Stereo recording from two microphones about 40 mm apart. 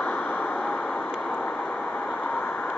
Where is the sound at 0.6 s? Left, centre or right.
Left.